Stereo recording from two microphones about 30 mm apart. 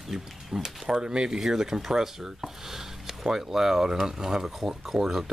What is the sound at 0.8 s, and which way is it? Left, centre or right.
Speech, right.